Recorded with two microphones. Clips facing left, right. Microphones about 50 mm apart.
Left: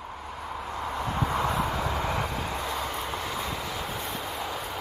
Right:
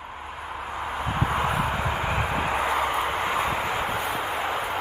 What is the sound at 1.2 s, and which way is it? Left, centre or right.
Vehicle, right.